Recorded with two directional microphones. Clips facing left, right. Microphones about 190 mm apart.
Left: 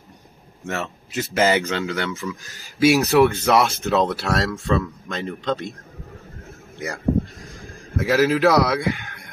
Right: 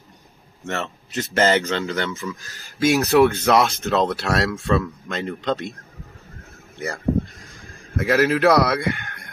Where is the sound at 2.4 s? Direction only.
15° left (ahead or behind).